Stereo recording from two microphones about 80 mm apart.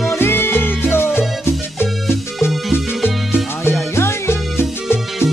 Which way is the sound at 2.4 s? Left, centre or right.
Centre.